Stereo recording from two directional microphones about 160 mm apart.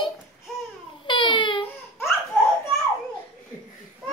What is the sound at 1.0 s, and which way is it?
Baby cry, 30° left (ahead or behind).